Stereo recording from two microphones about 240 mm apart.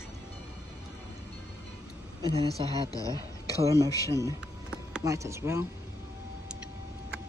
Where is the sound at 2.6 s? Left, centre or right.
Centre.